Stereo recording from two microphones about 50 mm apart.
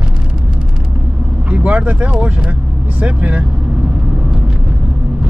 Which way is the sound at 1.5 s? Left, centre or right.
Right.